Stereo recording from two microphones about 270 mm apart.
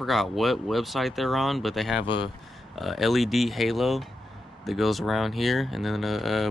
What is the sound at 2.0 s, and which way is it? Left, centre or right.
Speech, centre.